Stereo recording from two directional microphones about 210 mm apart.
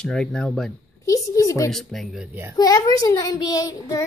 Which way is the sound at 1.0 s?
15° left (ahead or behind).